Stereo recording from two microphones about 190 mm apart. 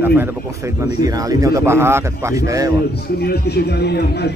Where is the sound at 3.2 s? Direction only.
55° left (ahead or behind).